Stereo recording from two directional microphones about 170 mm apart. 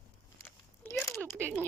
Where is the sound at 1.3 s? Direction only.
15° right (ahead or behind).